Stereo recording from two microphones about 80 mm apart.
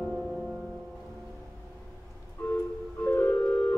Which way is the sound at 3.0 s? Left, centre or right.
Left.